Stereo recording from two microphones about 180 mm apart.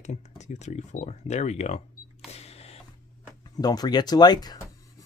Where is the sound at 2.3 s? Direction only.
35° left (ahead or behind).